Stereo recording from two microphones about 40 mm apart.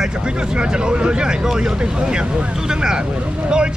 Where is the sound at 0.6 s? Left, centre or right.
Right.